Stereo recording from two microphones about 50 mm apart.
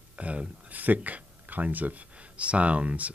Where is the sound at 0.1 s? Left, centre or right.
Right.